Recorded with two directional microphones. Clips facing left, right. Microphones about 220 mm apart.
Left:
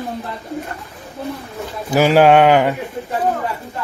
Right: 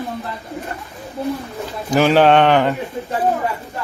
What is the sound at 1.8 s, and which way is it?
Speech, 10° left (ahead or behind).